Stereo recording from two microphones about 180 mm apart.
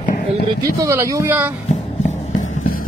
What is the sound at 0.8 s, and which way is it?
Speech, 15° right (ahead or behind).